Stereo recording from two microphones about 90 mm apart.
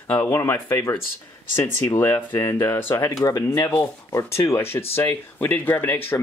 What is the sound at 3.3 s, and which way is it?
Speech, 40° left (ahead or behind).